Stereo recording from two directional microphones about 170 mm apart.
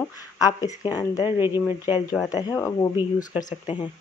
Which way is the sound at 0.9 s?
20° left (ahead or behind).